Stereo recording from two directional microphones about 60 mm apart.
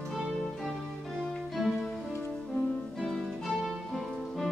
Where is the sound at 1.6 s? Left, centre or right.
Centre.